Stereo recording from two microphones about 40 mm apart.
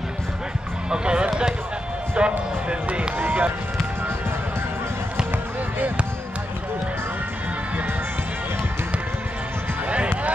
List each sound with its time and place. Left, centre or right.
0.8 s a sound: right
2.1 s speech: right
3.2 s run: right